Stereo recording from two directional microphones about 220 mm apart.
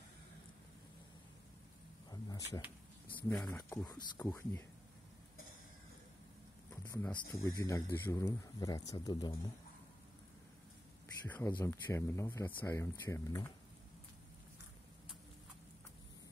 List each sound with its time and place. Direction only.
2.0 s a sound: 15° left (ahead or behind)
3.2 s speech: 10° left (ahead or behind)
6.8 s speech: 10° left (ahead or behind)
11.2 s speech: 10° left (ahead or behind)